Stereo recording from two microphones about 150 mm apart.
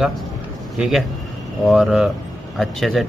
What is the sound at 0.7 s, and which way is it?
Speech, 5° right (ahead or behind).